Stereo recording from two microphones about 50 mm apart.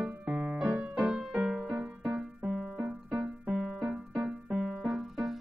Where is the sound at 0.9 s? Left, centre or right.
Centre.